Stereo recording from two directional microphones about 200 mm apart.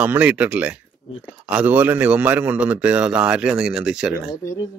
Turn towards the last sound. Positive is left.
turn(degrees=-5)  # may be behind; listen again after turning